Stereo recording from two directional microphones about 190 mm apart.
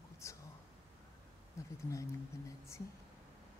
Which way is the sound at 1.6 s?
15° left (ahead or behind).